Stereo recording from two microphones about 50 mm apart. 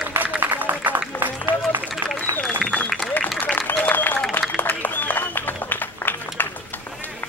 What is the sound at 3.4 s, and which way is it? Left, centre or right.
Applause, left.